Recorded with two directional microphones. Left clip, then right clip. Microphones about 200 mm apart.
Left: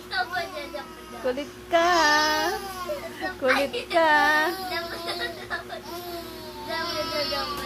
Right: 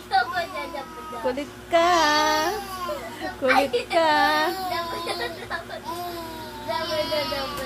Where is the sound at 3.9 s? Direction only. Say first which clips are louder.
Left 1 dB; centre (ahead or behind).